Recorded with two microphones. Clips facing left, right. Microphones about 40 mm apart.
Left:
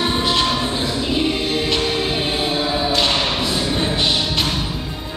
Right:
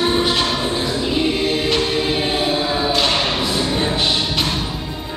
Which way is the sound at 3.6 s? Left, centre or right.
Centre.